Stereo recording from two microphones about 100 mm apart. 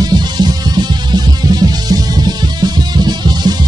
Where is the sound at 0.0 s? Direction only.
45° right (ahead or behind).